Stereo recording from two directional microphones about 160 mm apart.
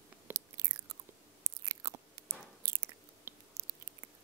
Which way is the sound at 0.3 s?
15° right (ahead or behind).